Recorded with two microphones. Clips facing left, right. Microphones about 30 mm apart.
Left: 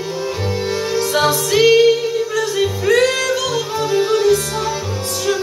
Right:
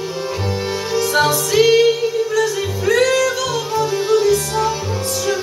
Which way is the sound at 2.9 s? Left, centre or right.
Centre.